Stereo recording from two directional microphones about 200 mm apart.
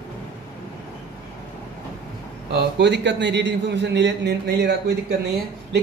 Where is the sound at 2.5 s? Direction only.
60° right (ahead or behind).